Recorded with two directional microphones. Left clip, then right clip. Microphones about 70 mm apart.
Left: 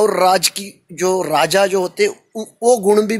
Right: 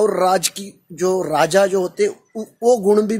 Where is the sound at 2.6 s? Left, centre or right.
Centre.